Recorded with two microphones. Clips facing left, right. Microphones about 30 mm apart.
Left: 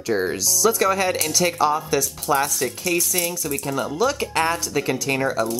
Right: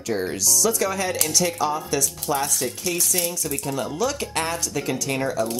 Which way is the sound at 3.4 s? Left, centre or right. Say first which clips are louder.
Left 2 dB; centre.